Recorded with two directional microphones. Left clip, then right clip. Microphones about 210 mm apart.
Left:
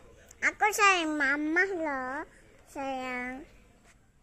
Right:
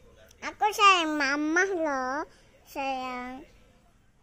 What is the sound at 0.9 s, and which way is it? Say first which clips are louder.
A child's voice: right 2 dB; 25° right (ahead or behind).